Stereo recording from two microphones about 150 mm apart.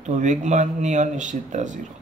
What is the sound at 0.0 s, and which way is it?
Speech, 55° right (ahead or behind).